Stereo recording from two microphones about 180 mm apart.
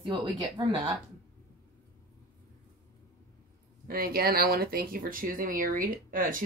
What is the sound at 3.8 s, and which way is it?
Speech, 55° right (ahead or behind).